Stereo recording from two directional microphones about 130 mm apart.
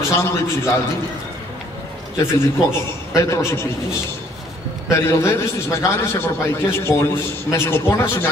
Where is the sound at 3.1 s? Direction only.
25° left (ahead or behind).